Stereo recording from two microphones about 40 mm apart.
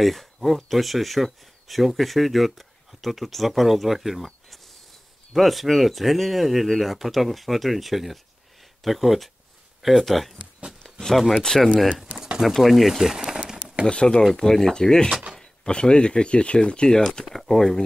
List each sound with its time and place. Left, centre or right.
0.0 s speech: centre
10.8 s a sound: centre
11.4 s speech: centre
12.4 s speech: centre
13.1 s crumpling: centre
13.8 s speech: left
14.3 s speech: centre